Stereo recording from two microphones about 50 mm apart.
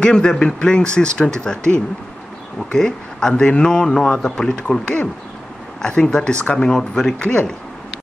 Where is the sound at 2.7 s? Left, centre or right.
Centre.